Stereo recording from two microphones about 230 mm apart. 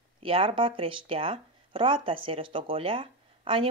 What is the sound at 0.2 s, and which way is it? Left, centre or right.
Speech, right.